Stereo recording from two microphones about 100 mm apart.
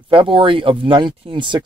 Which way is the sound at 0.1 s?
60° right (ahead or behind).